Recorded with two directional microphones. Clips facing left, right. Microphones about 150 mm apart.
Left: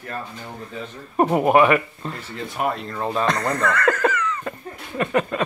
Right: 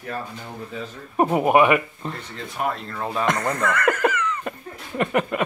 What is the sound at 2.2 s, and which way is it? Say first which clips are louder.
Speech: left 3 dB; 5° left (ahead or behind).